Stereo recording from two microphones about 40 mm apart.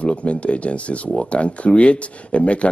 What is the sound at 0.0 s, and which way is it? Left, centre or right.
Speech, left.